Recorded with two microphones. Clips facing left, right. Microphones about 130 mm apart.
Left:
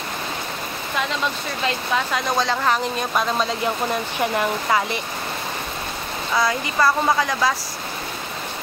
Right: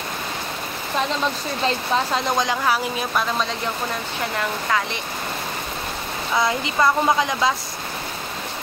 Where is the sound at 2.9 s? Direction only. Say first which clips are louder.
Left 1 dB; centre (ahead or behind).